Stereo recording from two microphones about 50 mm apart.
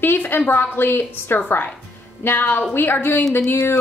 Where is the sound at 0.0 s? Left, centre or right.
Left.